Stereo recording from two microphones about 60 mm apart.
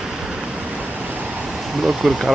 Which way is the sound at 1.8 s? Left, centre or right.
Centre.